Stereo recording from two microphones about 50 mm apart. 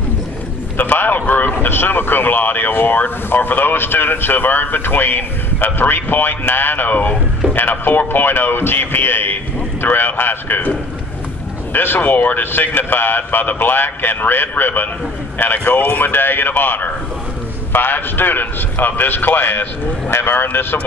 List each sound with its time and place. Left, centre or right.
0.7 s a sound: left
1.6 s speech: left
12.0 s speech: left